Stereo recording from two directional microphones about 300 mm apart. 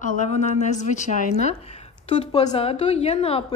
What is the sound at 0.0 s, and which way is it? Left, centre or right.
Speech, left.